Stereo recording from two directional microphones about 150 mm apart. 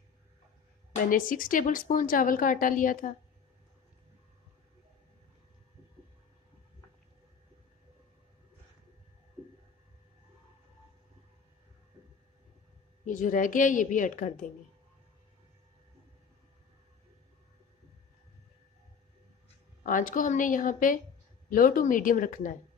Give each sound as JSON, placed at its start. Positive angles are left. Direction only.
{"t": 1.1, "sound": "a woman's voice", "side_deg": 65}
{"t": 13.0, "sound": "a woman's voice", "side_deg": 60}
{"t": 19.8, "sound": "a woman's voice", "side_deg": 65}